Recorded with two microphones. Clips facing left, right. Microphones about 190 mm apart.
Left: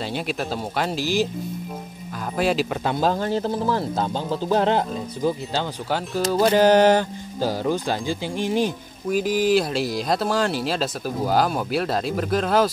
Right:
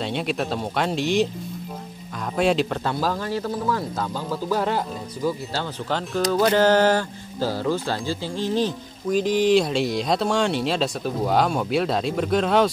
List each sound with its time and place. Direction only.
0.0 s speech: centre (ahead or behind)
2.3 s speech: 5° left (ahead or behind)
2.8 s speech: 20° left (ahead or behind); by 6.5 s 5° left (ahead or behind)
6.5 s speech: 15° left (ahead or behind)